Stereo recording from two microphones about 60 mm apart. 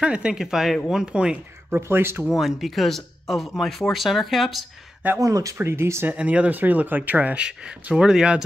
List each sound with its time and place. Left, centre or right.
0.0 s speech: centre
1.7 s speech: right
2.2 s speech: centre
5.2 s speech: right
5.6 s speech: right
6.0 s speech: right
7.9 s speech: centre